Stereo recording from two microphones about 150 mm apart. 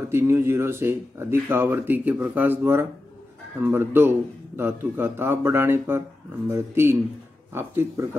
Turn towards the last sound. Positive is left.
turn(degrees=-15)  # may be behind; listen again after turning